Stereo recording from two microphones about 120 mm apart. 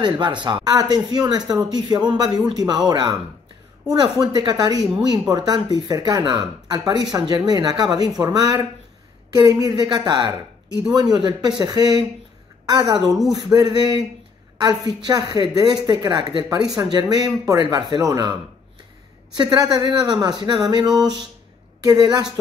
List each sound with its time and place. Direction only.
0.0 s speech: 40° right (ahead or behind)
19.3 s speech: 35° right (ahead or behind)